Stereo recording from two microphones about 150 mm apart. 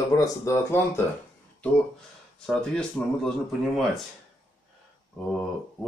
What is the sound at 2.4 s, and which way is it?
Speech, 5° left (ahead or behind).